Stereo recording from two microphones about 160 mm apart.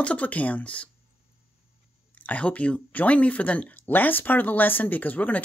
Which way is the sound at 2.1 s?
10° left (ahead or behind).